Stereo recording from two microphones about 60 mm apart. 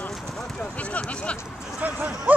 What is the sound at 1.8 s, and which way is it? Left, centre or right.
Speech, right.